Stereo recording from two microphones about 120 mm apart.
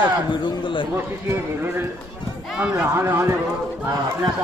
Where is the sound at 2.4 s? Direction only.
5° right (ahead or behind).